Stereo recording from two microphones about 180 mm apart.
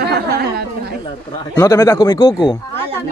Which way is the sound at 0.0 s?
60° right (ahead or behind).